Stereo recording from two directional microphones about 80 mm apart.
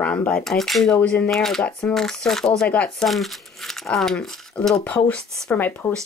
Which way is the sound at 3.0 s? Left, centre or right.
Centre.